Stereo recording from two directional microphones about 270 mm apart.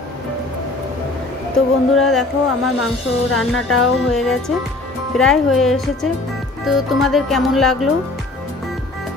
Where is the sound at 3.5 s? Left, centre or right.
Left.